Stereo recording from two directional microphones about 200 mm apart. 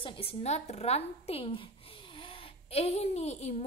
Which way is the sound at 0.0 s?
30° left (ahead or behind).